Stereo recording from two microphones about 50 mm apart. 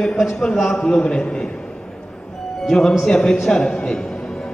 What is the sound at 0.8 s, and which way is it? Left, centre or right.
Speech, centre.